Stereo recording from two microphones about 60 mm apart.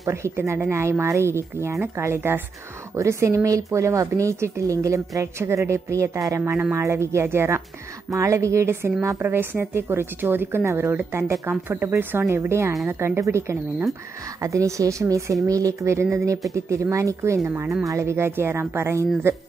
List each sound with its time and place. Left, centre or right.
0.0 s speech: right
3.0 s speech: right
5.4 s speech: right
6.5 s speech: right
6.8 s speech: right
8.1 s speech: right
9.1 s speech: right
12.3 s speech: right
14.4 s speech: right
15.4 s speech: right